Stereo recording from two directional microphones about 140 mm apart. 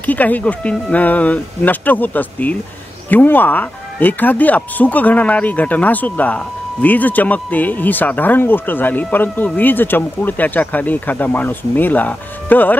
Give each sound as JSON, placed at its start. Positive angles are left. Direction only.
{"t": 0.0, "sound": "speech", "side_deg": 10}